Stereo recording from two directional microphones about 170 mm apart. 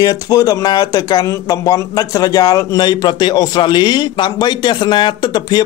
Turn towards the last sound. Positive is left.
turn(degrees=25)  # may be behind; listen again after turning